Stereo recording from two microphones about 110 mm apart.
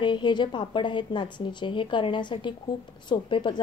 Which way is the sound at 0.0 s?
45° left (ahead or behind).